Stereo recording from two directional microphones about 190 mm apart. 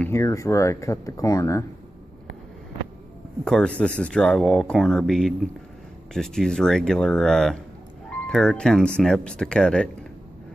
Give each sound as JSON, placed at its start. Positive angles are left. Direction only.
{"t": 0.0, "sound": "speech", "side_deg": 15}
{"t": 3.4, "sound": "speech", "side_deg": 5}